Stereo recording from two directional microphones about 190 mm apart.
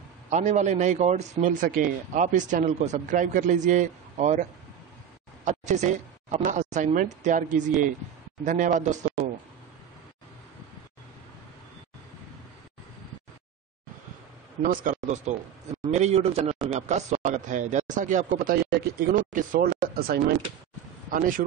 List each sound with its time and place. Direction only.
0.3 s speech: 40° right (ahead or behind)
14.6 s speech: 45° right (ahead or behind)
18.4 s speech: 50° right (ahead or behind)